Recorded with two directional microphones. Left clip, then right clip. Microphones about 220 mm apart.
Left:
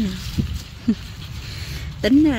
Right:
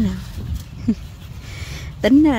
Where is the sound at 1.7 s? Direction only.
15° right (ahead or behind).